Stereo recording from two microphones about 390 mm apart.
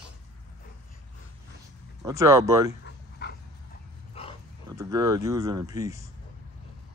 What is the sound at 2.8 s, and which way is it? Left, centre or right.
Dog, left.